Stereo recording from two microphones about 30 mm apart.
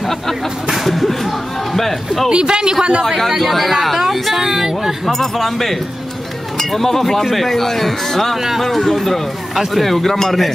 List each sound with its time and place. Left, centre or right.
0.8 s speech: centre
2.2 s speech: right
3.3 s speech: centre
5.0 s speech: centre